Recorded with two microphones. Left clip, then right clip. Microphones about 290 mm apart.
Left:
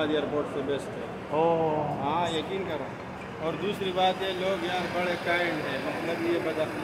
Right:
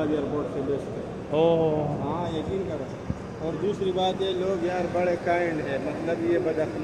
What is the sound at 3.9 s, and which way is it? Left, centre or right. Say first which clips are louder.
Speech: right 1 dB; left.